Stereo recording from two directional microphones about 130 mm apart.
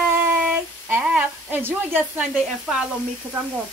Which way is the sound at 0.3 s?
15° right (ahead or behind).